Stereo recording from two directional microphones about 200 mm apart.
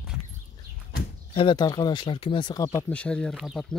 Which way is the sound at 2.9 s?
5° left (ahead or behind).